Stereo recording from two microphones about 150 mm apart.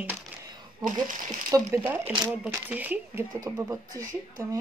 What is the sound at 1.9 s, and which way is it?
Speech, 10° right (ahead or behind).